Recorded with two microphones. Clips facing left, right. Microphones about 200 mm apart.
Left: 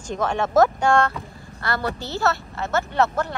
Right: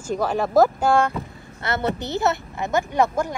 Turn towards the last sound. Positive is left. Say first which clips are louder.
# right 1 dB
turn(degrees=-10)  # may be behind; listen again after turning